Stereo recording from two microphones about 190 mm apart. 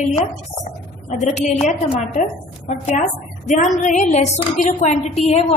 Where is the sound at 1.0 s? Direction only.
40° left (ahead or behind).